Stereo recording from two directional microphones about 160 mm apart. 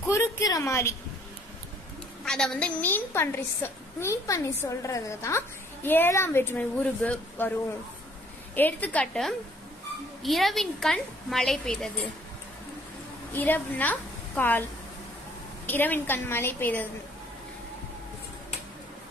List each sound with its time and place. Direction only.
0.0 s a woman's voice: 15° left (ahead or behind)
2.2 s a woman's voice: 5° left (ahead or behind)
8.5 s a woman's voice: 10° left (ahead or behind)
13.3 s a woman's voice: 10° left (ahead or behind)
15.6 s a woman's voice: 10° left (ahead or behind)